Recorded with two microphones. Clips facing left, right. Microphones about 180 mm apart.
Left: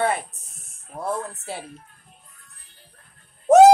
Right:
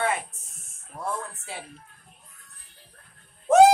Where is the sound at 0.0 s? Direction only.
35° left (ahead or behind).